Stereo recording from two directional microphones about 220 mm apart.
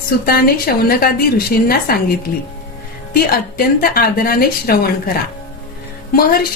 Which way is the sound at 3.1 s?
45° left (ahead or behind).